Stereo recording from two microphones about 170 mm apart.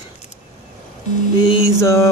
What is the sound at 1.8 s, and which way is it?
Speech, 15° left (ahead or behind).